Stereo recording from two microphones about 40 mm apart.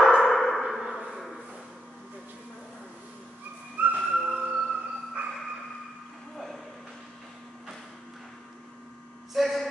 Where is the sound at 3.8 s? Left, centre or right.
Right.